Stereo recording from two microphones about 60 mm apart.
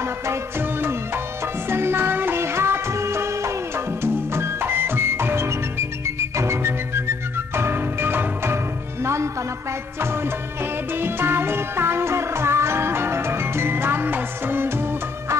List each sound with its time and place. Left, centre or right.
0.0 s music: right
9.0 s music: right
9.9 s music: right